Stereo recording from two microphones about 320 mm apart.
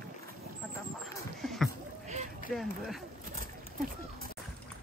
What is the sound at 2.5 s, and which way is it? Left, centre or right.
Speech, centre.